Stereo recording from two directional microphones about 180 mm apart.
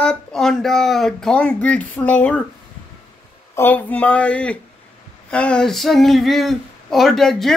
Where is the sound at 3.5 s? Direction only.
10° left (ahead or behind).